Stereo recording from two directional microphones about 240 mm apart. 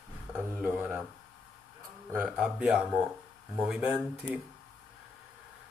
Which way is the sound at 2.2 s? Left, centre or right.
Centre.